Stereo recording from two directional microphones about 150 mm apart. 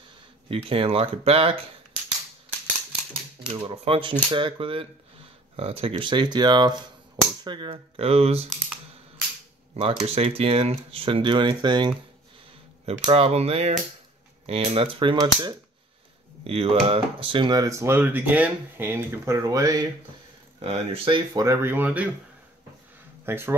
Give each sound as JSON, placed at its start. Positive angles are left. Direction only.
{"t": 0.5, "sound": "speech", "side_deg": -35}
{"t": 3.6, "sound": "speech", "side_deg": -40}
{"t": 9.8, "sound": "speech", "side_deg": -40}
{"t": 13.0, "sound": "speech", "side_deg": -40}
{"t": 20.5, "sound": "speech", "side_deg": -45}
{"t": 23.2, "sound": "speech", "side_deg": -15}